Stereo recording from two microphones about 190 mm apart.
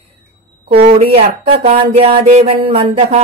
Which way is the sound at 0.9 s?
30° right (ahead or behind).